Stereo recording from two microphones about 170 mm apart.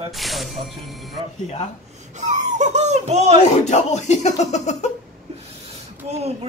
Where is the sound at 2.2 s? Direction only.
45° right (ahead or behind).